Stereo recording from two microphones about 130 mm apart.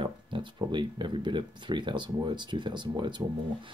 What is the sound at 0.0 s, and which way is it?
Speech, 35° right (ahead or behind).